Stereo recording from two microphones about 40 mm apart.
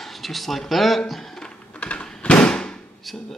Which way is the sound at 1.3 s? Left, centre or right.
Left.